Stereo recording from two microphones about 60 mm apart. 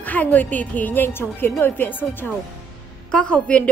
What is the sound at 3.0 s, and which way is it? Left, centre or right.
Speech, centre.